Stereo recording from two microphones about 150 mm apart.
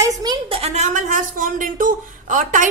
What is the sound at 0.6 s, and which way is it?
Speech, 50° right (ahead or behind).